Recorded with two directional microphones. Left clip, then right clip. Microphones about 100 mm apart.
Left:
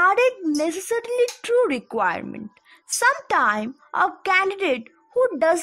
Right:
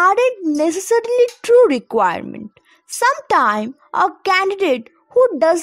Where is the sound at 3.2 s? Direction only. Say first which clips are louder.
Right 5 dB; 45° right (ahead or behind).